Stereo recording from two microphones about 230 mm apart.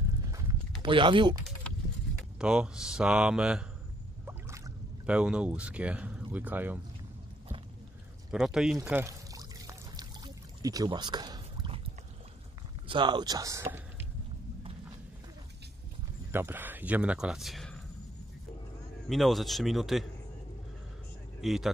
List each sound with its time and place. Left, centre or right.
0.3 s a sound: centre
2.3 s speech: centre
8.3 s speech: centre
8.7 s pour: centre
12.8 s speech: right
16.3 s speech: centre
19.0 s speech: centre
21.4 s vehicle: centre